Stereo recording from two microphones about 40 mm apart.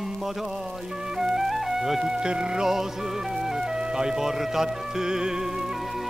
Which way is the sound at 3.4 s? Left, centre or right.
Centre.